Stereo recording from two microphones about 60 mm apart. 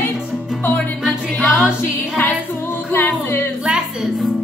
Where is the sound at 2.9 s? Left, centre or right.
Left.